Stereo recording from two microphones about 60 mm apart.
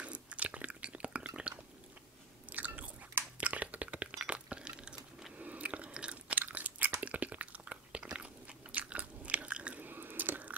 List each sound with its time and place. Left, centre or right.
0.0 s chewing: right
2.5 s biting: right
3.3 s a sound: right
4.2 s chink: centre
5.4 s chewing: right
6.4 s crunch: right
7.0 s biting: right
9.8 s drip: right